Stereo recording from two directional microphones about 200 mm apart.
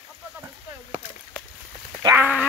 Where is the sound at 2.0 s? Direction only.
15° right (ahead or behind).